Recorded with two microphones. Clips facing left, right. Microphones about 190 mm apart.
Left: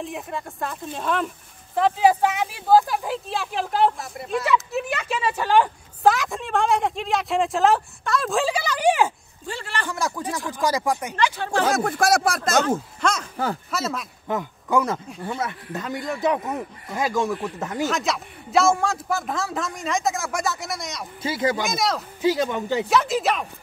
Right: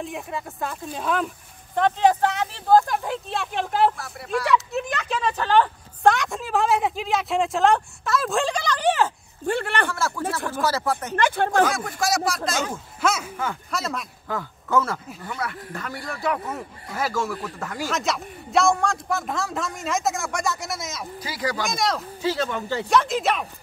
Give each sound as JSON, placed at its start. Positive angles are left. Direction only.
{"t": 0.0, "sound": "a woman's voice", "side_deg": 0}
{"t": 3.9, "sound": "speech", "side_deg": 20}
{"t": 4.5, "sound": "a woman's voice", "side_deg": 5}
{"t": 9.5, "sound": "speech", "side_deg": -60}
{"t": 9.8, "sound": "speech", "side_deg": 15}
{"t": 11.1, "sound": "speech", "side_deg": -55}
{"t": 11.7, "sound": "speech", "side_deg": 50}
{"t": 13.0, "sound": "a woman's voice", "side_deg": -10}
{"t": 14.2, "sound": "a man's voice", "side_deg": 20}
{"t": 17.8, "sound": "a woman's voice", "side_deg": 0}
{"t": 21.2, "sound": "speech", "side_deg": 25}
{"t": 21.6, "sound": "a woman's voice", "side_deg": 0}
{"t": 22.2, "sound": "speech", "side_deg": 15}
{"t": 22.8, "sound": "a woman's voice", "side_deg": 5}